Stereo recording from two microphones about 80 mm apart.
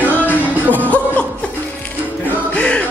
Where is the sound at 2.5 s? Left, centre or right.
Centre.